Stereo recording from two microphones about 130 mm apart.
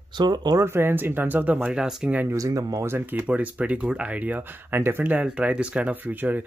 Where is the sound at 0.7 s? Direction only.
15° right (ahead or behind).